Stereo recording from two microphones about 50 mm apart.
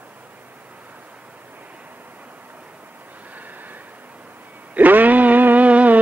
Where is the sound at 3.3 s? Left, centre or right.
Right.